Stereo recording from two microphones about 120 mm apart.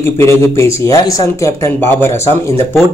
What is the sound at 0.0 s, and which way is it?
Speech, 20° left (ahead or behind).